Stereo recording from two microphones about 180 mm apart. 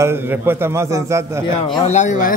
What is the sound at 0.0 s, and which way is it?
A man's voice, 10° right (ahead or behind).